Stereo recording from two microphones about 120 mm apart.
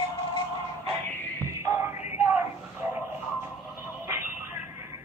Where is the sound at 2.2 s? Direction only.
15° right (ahead or behind).